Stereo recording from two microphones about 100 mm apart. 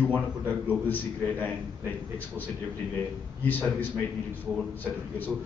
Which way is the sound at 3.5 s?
20° left (ahead or behind).